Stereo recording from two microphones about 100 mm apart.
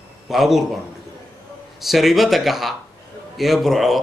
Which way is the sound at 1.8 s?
Centre (ahead or behind).